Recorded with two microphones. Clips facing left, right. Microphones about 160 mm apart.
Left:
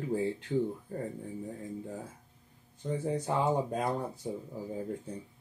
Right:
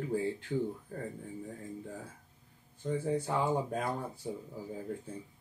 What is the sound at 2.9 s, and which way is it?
Speech, 20° left (ahead or behind).